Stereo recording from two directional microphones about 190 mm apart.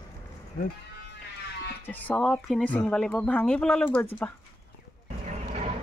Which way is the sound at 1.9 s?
5° left (ahead or behind).